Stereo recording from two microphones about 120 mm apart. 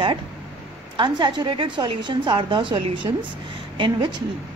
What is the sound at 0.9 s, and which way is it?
A woman's voice, 40° right (ahead or behind).